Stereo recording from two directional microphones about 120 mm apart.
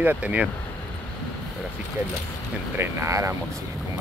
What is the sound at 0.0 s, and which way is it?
Speech, 15° right (ahead or behind).